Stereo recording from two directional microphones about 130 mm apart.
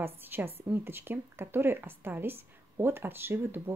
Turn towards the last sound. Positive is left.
turn(degrees=-15)  # may be behind; listen again after turning